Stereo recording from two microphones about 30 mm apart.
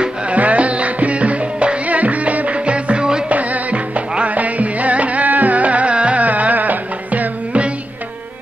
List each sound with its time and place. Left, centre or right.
0.3 s music: right
1.9 s music: right
3.3 s music: right
6.2 s music: right